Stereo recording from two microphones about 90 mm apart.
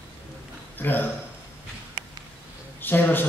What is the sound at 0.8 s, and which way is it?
Speech, 20° left (ahead or behind).